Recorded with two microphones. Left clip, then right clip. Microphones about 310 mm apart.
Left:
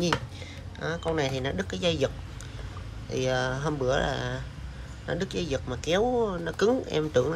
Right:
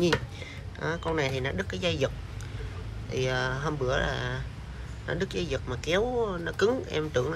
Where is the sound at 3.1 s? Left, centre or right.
Centre.